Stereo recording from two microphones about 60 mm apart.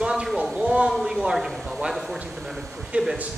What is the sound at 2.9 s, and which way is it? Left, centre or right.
Speech, right.